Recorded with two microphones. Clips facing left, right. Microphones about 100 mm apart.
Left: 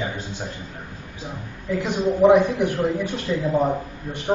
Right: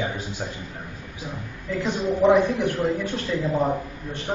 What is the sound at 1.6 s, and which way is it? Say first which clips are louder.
Speech: left 2 dB; 15° left (ahead or behind).